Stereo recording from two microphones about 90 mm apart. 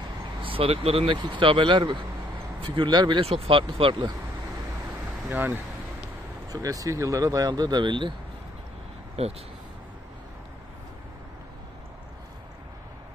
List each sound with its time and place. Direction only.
0.4 s speech: 90° right; by 3.2 s 55° right (ahead or behind)
3.4 s speech: 80° right
5.3 s speech: 20° right (ahead or behind)
6.5 s speech: 40° right (ahead or behind); by 8.1 s 60° right (ahead or behind)
9.2 s speech: 90° right